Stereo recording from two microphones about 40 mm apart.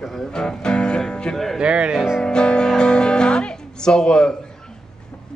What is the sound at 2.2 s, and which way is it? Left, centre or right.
Speech, left.